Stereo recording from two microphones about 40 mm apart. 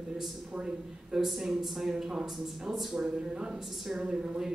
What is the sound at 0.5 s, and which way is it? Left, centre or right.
Speech, right.